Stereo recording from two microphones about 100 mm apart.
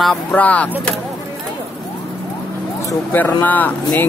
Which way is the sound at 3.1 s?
20° left (ahead or behind).